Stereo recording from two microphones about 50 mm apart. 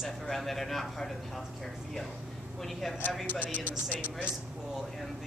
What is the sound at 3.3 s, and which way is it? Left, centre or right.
Speech, left.